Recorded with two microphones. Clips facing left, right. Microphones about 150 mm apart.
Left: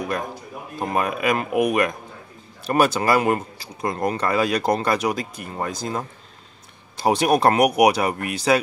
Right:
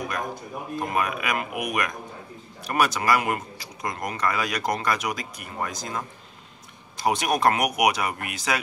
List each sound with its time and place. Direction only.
0.7 s speech: 30° left (ahead or behind)